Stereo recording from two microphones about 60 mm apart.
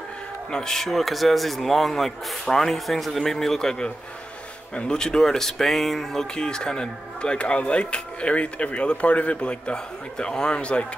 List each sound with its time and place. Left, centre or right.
0.5 s a man's voice: centre